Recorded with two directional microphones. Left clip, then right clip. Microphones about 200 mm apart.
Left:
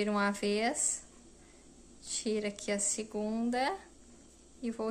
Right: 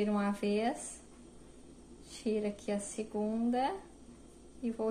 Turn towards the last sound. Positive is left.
turn(degrees=25)  # may be behind; listen again after turning